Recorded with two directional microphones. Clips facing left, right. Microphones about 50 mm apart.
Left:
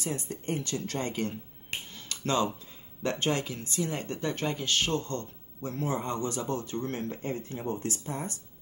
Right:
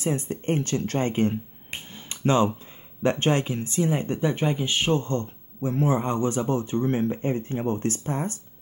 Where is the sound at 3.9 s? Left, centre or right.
Centre.